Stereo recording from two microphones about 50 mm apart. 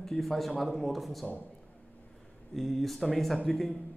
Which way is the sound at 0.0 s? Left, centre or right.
Centre.